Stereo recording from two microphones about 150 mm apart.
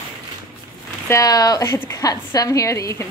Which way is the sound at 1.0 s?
25° left (ahead or behind).